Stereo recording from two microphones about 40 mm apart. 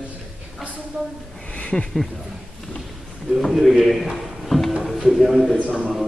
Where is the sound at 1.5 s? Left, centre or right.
Left.